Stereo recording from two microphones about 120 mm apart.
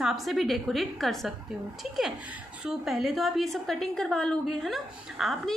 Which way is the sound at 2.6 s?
Centre (ahead or behind).